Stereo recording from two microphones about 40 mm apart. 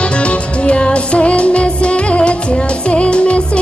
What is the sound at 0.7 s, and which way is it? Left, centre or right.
Music, left.